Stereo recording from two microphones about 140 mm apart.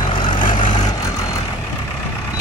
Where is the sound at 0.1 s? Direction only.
35° left (ahead or behind).